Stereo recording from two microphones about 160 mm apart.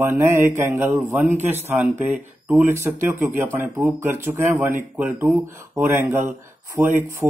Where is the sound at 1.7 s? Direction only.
10° right (ahead or behind).